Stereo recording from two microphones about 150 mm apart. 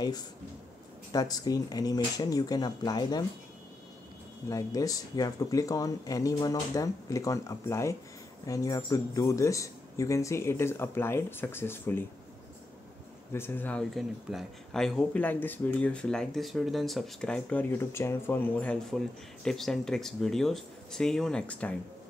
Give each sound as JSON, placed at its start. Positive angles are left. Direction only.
{"t": 1.1, "sound": "speech", "side_deg": 25}
{"t": 4.5, "sound": "speech", "side_deg": 25}
{"t": 13.3, "sound": "speech", "side_deg": 15}